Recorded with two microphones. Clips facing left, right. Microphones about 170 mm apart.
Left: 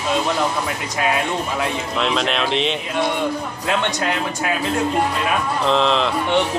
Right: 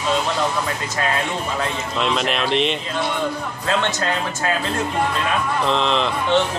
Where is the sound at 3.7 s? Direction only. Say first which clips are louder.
Even; 15° left (ahead or behind).